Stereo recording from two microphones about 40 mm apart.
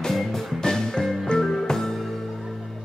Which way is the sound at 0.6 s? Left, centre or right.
Centre.